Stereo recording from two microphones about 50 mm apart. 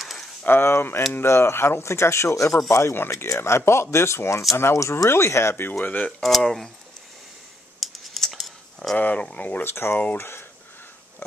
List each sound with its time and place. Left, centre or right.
0.0 s a sound: centre
0.5 s speech: left
2.7 s speech: left
5.9 s speech: left
6.4 s speech: centre
7.8 s typing: centre
8.3 s a sound: centre
8.9 s speech: left
9.7 s speech: left